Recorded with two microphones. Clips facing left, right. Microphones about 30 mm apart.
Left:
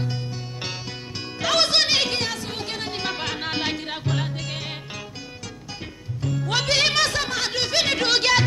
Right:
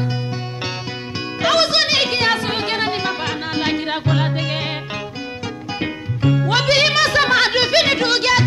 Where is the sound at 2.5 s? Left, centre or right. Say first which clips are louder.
Right 10 dB; right.